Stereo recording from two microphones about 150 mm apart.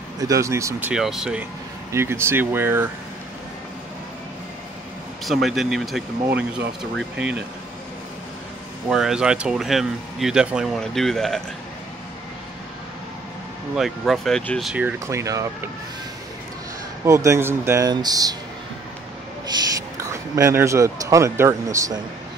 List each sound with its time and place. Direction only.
0.2 s speech: 20° right (ahead or behind); by 1.4 s 5° right (ahead or behind)
1.9 s speech: 15° right (ahead or behind)
5.2 s speech: centre (ahead or behind)
8.8 s speech: 5° right (ahead or behind)
13.7 s speech: centre (ahead or behind)
14.7 s speech: 10° right (ahead or behind)
17.0 s speech: 20° right (ahead or behind)
19.5 s a man's voice: 30° right (ahead or behind)